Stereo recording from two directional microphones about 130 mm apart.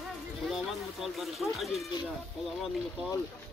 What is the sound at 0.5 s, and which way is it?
Speech, centre (ahead or behind).